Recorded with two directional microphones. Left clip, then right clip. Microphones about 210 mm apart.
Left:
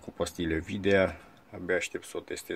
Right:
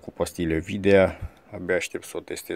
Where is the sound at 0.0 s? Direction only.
30° right (ahead or behind).